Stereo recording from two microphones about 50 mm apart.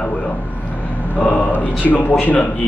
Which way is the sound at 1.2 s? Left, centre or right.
Left.